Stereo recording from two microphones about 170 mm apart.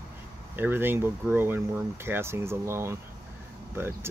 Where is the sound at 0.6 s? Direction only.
10° right (ahead or behind).